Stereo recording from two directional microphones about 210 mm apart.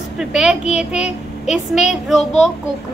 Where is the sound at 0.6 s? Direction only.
30° left (ahead or behind).